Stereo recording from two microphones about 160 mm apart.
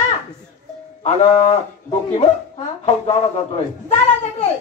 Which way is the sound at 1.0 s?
40° left (ahead or behind).